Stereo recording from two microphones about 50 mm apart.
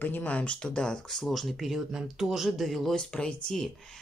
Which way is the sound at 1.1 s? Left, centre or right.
Centre.